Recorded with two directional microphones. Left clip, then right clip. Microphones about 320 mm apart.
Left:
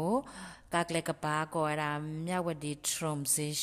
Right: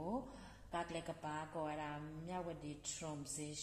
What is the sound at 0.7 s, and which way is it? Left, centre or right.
Speech, left.